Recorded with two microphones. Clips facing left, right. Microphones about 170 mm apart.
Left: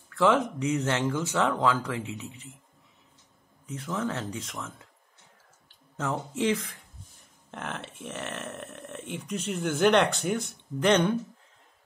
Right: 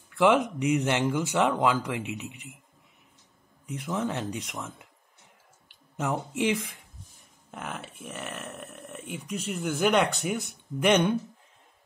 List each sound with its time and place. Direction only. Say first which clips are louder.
0.1 s speech: right 1 dB; 15° right (ahead or behind)
3.6 s speech: right 1 dB; 15° right (ahead or behind)
5.9 s speech: right 1 dB; 15° right (ahead or behind)